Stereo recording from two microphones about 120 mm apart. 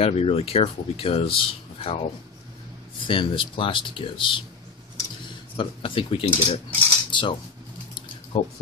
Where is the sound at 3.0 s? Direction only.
45° left (ahead or behind).